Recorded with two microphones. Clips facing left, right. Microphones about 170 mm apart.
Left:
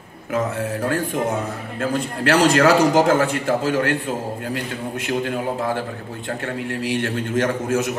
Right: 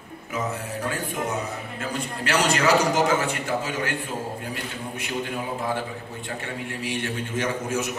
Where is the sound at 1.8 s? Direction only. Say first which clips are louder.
Left 9 dB; 55° left (ahead or behind).